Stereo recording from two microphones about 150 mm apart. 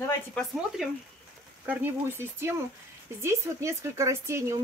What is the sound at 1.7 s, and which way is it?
Speech, 15° right (ahead or behind).